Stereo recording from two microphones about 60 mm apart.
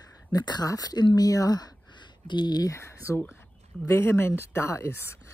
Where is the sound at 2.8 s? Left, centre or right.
Left.